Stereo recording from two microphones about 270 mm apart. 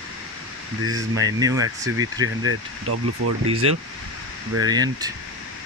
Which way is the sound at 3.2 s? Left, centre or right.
Right.